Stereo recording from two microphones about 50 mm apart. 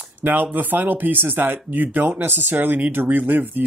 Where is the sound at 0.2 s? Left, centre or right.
Right.